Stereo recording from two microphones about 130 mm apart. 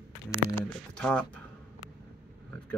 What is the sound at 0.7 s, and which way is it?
Speech, 5° left (ahead or behind).